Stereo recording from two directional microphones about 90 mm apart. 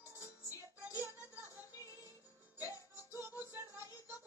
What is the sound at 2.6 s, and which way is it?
Music, 35° left (ahead or behind).